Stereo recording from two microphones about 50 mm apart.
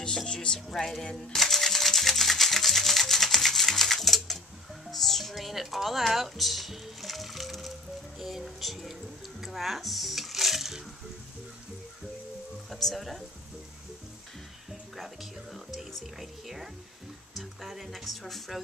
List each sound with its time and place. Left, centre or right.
0.0 s music: centre
1.3 s music: centre
4.8 s speech: centre
12.6 s speech: centre
15.7 s speech: centre